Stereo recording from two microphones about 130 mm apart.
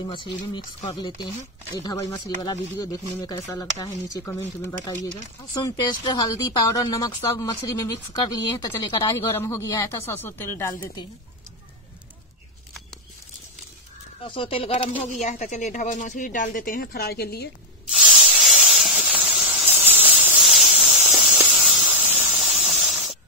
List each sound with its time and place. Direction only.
0.0 s speech: 35° left (ahead or behind); by 4.7 s 20° left (ahead or behind)
5.0 s speech: 30° left (ahead or behind)
9.3 s speech: 20° left (ahead or behind)
14.2 s speech: 45° left (ahead or behind)
14.7 s speech: 65° left (ahead or behind); by 16.8 s 90° left
17.8 s spray: 5° right (ahead or behind)
19.6 s a sound: 15° right (ahead or behind)
21.5 s spray: 5° right (ahead or behind)
22.4 s steam: centre (ahead or behind)